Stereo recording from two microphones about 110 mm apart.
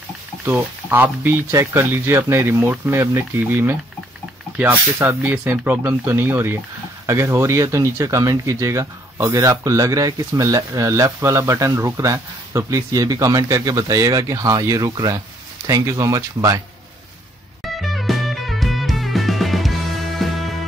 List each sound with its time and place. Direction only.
0.5 s speech: 15° right (ahead or behind)
4.9 s speech: 20° right (ahead or behind)
17.7 s music: centre (ahead or behind)